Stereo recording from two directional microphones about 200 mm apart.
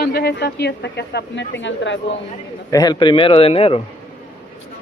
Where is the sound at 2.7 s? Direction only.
20° left (ahead or behind).